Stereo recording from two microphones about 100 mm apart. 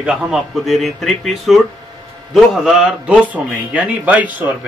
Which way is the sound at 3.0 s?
15° right (ahead or behind).